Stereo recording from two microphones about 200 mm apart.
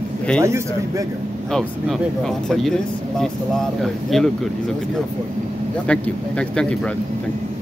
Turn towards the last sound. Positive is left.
turn(degrees=5)  # may be behind; listen again after turning